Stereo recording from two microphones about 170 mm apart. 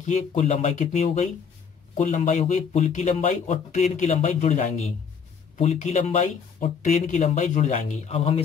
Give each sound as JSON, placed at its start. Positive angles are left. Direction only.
{"t": 0.0, "sound": "speech", "side_deg": 45}